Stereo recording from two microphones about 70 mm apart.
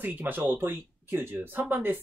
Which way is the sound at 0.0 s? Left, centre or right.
Right.